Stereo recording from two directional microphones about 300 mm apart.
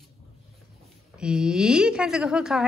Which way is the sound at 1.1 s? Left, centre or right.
Centre.